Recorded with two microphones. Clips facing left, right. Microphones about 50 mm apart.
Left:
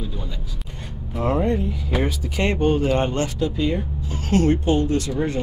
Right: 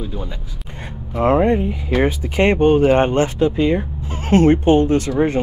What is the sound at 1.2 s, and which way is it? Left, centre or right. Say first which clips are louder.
Speech: right 6 dB; right.